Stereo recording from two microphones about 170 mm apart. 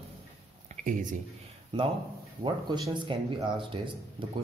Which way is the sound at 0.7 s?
50° right (ahead or behind).